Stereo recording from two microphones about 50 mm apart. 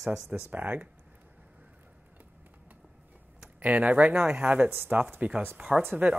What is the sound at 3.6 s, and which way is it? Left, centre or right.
Speech, right.